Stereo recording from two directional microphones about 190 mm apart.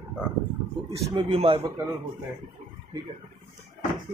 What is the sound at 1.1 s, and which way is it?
Speech, 30° right (ahead or behind).